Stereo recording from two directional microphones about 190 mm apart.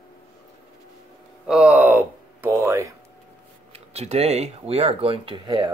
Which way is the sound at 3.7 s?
35° right (ahead or behind).